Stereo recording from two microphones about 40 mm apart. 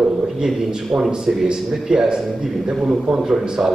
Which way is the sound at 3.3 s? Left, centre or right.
Centre.